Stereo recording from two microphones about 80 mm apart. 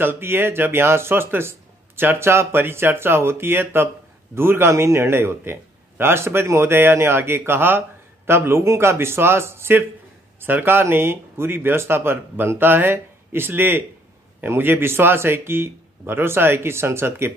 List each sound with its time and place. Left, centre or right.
0.0 s a man's voice: right